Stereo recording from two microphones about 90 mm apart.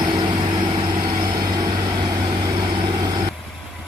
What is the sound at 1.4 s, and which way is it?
Vehicle, 45° right (ahead or behind).